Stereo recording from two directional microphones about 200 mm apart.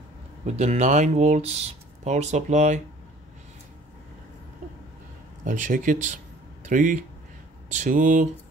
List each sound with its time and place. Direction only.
0.5 s speech: 35° right (ahead or behind)
5.4 s speech: 40° right (ahead or behind)